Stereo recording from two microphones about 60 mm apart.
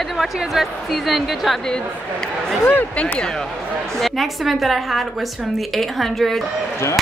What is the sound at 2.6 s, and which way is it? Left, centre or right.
Speech, left.